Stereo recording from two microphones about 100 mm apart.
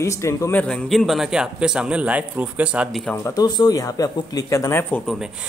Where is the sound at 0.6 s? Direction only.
10° left (ahead or behind).